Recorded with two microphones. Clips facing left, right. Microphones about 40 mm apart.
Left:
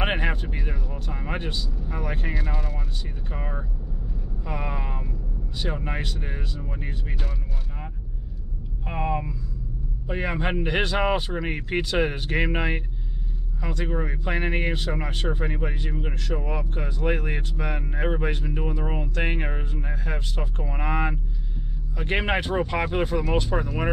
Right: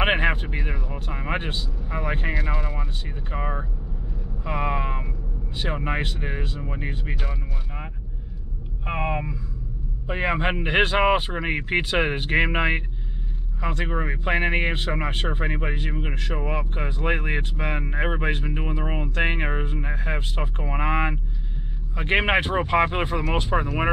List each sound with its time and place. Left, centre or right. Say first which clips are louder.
0.0 s speech: right 5 dB; right
8.8 s speech: right 1 dB; right